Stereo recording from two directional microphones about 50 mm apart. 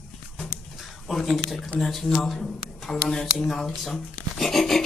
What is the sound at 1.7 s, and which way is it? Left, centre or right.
Speech, centre.